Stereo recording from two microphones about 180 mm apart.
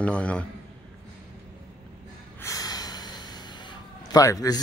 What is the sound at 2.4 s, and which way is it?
Gasp, 20° left (ahead or behind).